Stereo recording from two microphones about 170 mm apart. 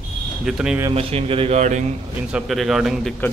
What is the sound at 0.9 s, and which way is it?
Speech, 35° right (ahead or behind).